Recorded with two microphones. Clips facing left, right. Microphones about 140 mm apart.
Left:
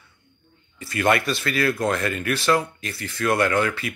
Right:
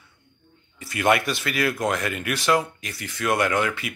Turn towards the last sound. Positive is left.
turn(degrees=-15)  # may be behind; listen again after turning